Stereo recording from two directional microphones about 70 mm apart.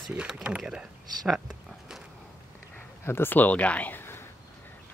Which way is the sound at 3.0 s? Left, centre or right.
Left.